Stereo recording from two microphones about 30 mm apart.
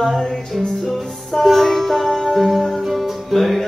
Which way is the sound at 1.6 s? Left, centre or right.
Centre.